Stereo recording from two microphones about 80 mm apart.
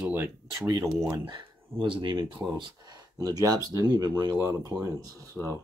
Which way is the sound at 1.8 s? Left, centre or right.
Right.